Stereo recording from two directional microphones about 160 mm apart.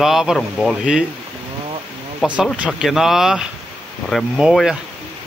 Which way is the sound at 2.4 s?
5° right (ahead or behind).